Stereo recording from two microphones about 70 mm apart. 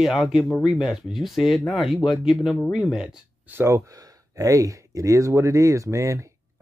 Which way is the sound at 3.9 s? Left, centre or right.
Right.